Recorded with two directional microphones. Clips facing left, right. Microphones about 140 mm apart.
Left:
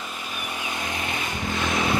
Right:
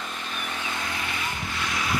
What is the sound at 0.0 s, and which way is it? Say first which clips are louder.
Vehicle: even; 5° left (ahead or behind).